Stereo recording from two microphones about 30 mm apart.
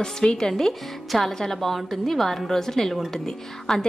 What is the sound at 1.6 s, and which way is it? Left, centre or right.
A woman's voice, centre.